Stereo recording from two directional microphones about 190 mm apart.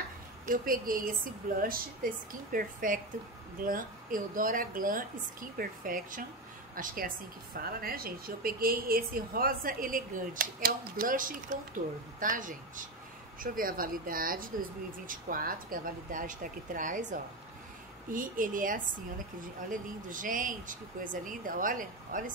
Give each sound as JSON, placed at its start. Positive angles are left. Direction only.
{"t": 0.5, "sound": "a woman's voice", "side_deg": -50}